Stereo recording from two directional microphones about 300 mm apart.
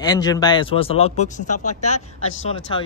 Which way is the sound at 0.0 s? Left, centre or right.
Centre.